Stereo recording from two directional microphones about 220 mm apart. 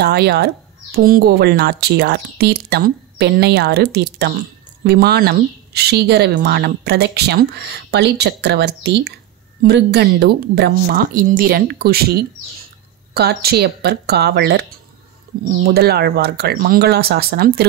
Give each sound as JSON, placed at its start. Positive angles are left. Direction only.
{"t": 0.0, "sound": "speech", "side_deg": -50}